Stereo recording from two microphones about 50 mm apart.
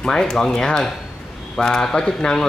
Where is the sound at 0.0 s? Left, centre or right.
Centre.